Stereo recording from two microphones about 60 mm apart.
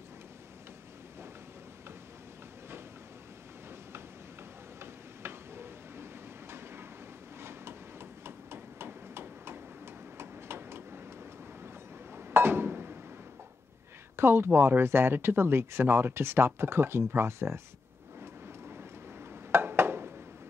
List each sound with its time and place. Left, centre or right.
4.7 s tick-tock: right
6.5 s train: right
7.3 s hammer: right
10.1 s a sound: right
12.2 s glass: right
14.1 s speech: right
18.2 s vehicle: right
19.5 s a sound: right